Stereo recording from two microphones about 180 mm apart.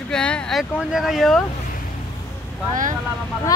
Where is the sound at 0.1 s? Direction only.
5° left (ahead or behind).